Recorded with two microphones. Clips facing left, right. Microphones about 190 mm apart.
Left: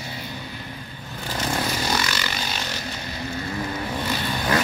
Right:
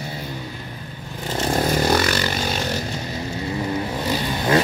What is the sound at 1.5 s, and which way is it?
Vehicle, 50° right (ahead or behind).